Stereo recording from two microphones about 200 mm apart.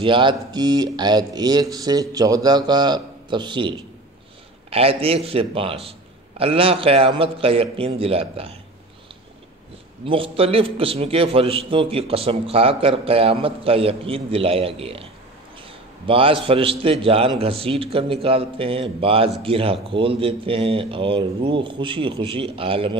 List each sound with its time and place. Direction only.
0.0 s a man's voice: 25° right (ahead or behind)
10.0 s a man's voice: 25° right (ahead or behind)
16.1 s a man's voice: 25° right (ahead or behind)